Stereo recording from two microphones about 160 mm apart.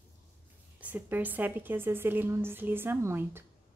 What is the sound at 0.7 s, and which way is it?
Speech, 10° right (ahead or behind).